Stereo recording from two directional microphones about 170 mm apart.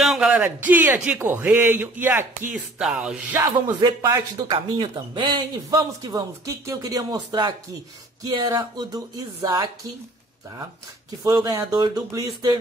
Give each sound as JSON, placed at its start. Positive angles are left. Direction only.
{"t": 0.0, "sound": "speech", "side_deg": -5}
{"t": 3.8, "sound": "speech", "side_deg": -25}
{"t": 11.2, "sound": "speech", "side_deg": -20}